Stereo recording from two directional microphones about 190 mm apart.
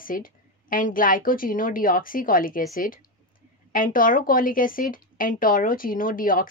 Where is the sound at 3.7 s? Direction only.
45° left (ahead or behind).